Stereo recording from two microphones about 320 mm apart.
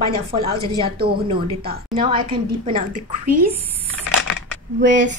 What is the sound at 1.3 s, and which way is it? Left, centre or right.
A woman's voice, right.